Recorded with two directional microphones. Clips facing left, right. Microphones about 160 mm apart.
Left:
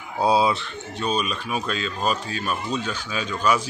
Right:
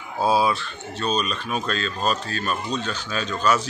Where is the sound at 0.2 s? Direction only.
20° left (ahead or behind).